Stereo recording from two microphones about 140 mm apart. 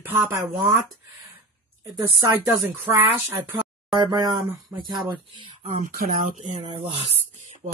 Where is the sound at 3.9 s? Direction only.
30° right (ahead or behind).